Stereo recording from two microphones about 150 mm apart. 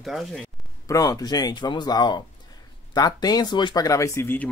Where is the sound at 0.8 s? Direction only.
25° left (ahead or behind).